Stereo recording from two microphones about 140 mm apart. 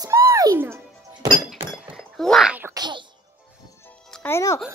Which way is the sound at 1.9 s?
Centre (ahead or behind).